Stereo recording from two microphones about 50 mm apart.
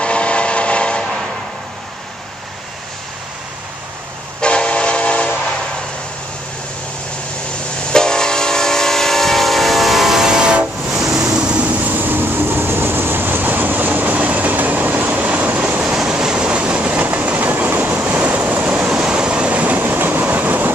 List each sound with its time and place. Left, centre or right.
0.0 s train: left
4.4 s train: centre
7.9 s train: centre
11.6 s train: right
17.9 s waves: right
18.9 s train: centre; by 20.7 s right